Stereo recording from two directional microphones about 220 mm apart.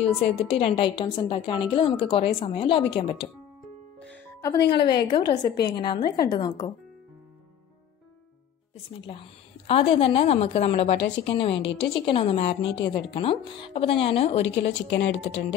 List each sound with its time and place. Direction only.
0.2 s a woman's voice: 30° left (ahead or behind)
4.0 s music: 10° left (ahead or behind)
4.6 s a woman's voice: 20° left (ahead or behind)
8.9 s a woman's voice: 25° left (ahead or behind)
14.7 s speech: 55° left (ahead or behind)